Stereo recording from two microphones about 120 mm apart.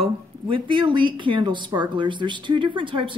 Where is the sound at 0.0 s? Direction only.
45° right (ahead or behind).